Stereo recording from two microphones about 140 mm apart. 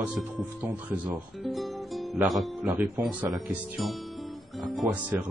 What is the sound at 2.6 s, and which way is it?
Speech, 15° right (ahead or behind).